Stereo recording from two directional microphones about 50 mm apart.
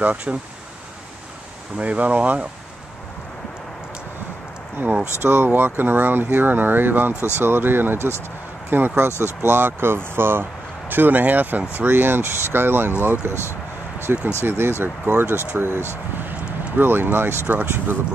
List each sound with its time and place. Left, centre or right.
0.0 s speech: right
1.8 s speech: right
5.2 s speech: right
7.2 s speech: left
7.4 s speech: right
10.9 s speech: right
14.0 s speech: right